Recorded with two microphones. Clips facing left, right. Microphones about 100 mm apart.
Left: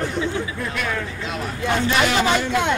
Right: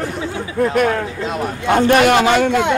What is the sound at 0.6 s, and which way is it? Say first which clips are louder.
Speech: right 10 dB; 50° right (ahead or behind).